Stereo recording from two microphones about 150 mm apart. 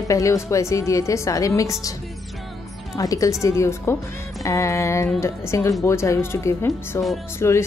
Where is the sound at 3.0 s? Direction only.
20° left (ahead or behind).